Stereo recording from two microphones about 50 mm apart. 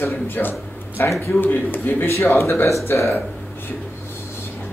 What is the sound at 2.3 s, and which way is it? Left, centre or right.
Speech, left.